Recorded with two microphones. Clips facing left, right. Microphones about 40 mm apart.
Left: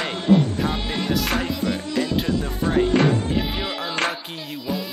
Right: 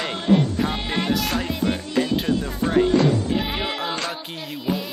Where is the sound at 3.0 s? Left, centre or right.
Left.